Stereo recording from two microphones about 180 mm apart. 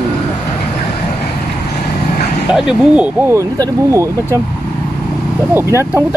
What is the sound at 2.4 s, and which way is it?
Speech, 5° right (ahead or behind).